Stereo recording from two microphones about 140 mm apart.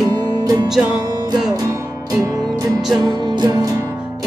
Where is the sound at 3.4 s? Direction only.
30° right (ahead or behind).